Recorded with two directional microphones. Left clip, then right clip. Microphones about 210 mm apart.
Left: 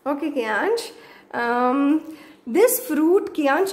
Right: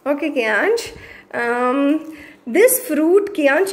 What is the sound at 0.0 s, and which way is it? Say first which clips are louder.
A woman's voice: right 5 dB; centre (ahead or behind).